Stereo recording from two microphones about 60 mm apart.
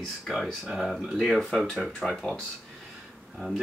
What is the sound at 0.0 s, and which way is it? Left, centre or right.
Speech, centre.